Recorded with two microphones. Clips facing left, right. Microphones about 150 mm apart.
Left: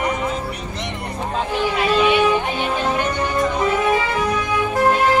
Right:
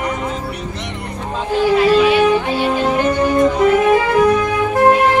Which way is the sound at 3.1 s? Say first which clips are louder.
Right 7 dB; 50° right (ahead or behind).